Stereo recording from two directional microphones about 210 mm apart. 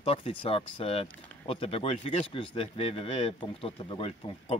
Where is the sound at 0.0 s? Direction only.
25° left (ahead or behind).